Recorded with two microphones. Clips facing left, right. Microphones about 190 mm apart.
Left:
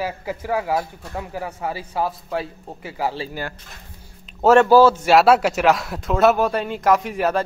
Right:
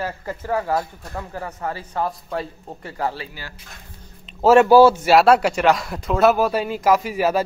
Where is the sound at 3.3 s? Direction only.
50° left (ahead or behind).